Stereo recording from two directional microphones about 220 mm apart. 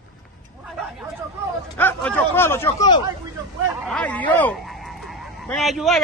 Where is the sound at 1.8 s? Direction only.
5° left (ahead or behind).